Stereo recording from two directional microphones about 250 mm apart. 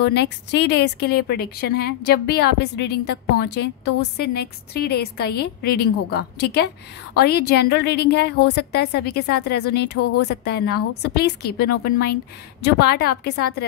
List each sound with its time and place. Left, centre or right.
0.0 s a woman's voice: left